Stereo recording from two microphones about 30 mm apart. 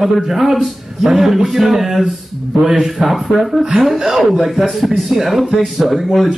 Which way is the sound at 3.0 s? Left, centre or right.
Centre.